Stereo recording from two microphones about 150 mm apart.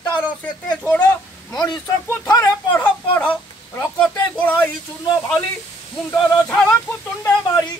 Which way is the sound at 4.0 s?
10° left (ahead or behind).